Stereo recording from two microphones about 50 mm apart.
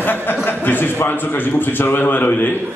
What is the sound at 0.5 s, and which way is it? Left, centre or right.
A man's voice, left.